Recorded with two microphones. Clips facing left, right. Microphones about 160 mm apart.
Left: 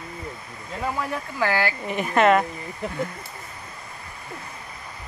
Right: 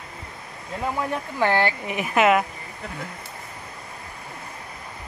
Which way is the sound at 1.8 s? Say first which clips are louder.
Left 1 dB; 5° right (ahead or behind).